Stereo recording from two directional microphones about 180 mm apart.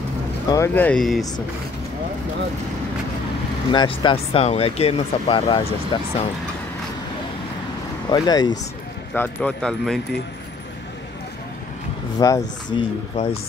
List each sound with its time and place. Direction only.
0.5 s speech: 15° left (ahead or behind)
3.7 s speech: 25° left (ahead or behind)
8.1 s speech: 25° left (ahead or behind)
9.1 s speech: 10° left (ahead or behind)
12.2 s speech: 20° left (ahead or behind)
12.7 s speech: 30° left (ahead or behind)